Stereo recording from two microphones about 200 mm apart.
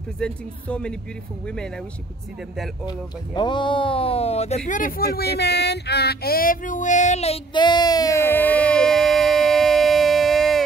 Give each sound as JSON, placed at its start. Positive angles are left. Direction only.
{"t": 0.2, "sound": "speech", "side_deg": 5}
{"t": 2.5, "sound": "speech", "side_deg": 0}
{"t": 2.9, "sound": "speech", "side_deg": 20}